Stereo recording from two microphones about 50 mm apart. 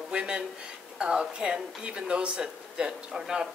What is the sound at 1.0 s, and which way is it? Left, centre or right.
Speech, centre.